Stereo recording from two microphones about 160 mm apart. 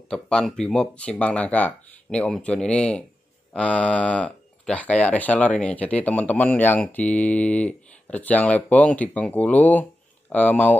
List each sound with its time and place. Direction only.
0.1 s speech: 5° left (ahead or behind)